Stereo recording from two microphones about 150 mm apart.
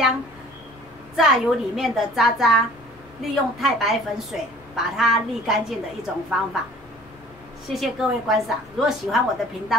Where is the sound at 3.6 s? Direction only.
Centre (ahead or behind).